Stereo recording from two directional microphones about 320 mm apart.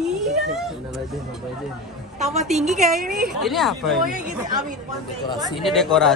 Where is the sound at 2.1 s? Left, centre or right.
Right.